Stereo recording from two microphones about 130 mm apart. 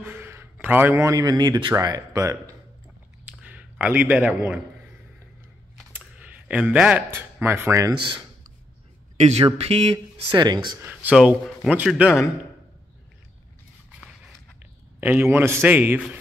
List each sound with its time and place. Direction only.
0.0 s speech: 15° right (ahead or behind)
3.3 s clicking: 10° right (ahead or behind)
5.9 s a sound: 10° right (ahead or behind)
7.1 s a man's voice: 15° right (ahead or behind)
9.1 s speech: 55° right (ahead or behind)
10.3 s speech: 35° right (ahead or behind)
10.8 s a man's voice: 15° right (ahead or behind)
15.0 s a man's voice: 15° right (ahead or behind)